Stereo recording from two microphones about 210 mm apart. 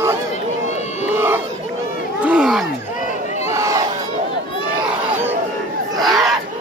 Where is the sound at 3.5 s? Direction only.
15° right (ahead or behind).